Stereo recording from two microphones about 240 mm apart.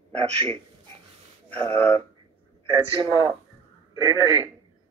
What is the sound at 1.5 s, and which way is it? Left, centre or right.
Speech, centre.